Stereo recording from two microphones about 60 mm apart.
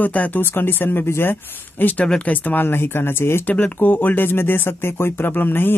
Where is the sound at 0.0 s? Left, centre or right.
Left.